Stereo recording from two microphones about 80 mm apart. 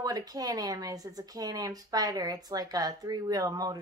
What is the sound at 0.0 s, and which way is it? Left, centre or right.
Speech, right.